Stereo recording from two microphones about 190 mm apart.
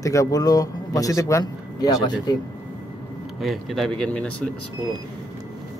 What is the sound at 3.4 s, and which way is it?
Speech, centre (ahead or behind).